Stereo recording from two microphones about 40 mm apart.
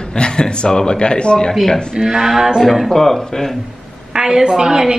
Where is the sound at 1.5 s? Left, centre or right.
Centre.